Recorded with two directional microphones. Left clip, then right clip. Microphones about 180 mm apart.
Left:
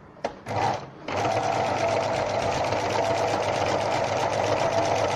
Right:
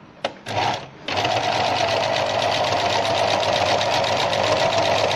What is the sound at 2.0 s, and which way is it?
Sewing machine, centre (ahead or behind).